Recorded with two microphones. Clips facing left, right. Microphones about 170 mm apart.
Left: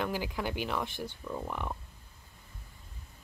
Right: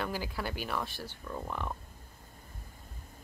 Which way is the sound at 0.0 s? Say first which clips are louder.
Left 2 dB; 15° left (ahead or behind).